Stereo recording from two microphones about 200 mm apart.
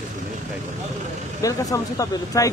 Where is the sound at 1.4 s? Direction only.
15° left (ahead or behind).